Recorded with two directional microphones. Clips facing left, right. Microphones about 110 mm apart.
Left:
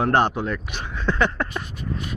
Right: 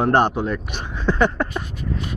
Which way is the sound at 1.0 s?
10° right (ahead or behind).